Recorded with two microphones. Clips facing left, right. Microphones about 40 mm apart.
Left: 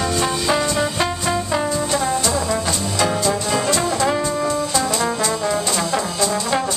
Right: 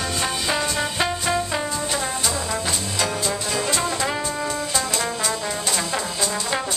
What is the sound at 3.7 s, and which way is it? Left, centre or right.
Brass instrument, centre.